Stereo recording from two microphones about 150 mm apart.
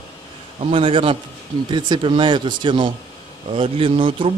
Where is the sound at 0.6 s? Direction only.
40° right (ahead or behind).